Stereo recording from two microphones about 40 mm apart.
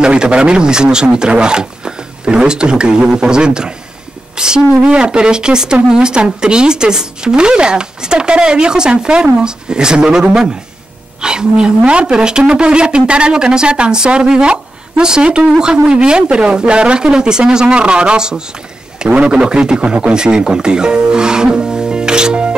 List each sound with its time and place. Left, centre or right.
0.0 s speech: right